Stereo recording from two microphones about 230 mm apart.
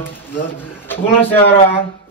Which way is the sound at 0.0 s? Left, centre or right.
Centre.